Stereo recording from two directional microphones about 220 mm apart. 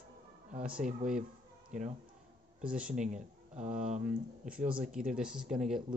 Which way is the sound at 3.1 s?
35° right (ahead or behind).